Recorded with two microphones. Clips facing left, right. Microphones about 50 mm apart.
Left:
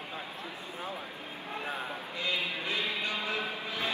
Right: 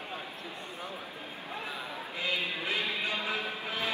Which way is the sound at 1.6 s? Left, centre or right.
Left.